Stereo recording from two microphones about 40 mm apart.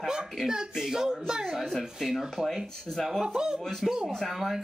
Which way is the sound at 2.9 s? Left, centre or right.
Centre.